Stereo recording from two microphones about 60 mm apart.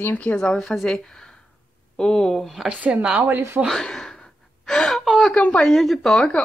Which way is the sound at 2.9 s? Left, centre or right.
Centre.